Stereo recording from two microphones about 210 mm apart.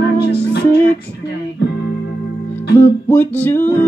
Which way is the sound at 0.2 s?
50° left (ahead or behind).